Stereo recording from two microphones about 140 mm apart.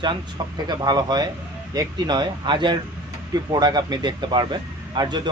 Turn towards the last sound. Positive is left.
turn(degrees=-35)  # may be behind; listen again after turning